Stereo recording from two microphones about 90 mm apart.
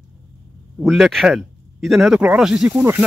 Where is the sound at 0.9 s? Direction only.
Centre (ahead or behind).